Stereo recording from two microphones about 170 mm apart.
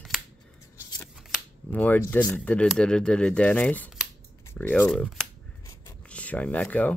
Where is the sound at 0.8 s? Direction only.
15° left (ahead or behind).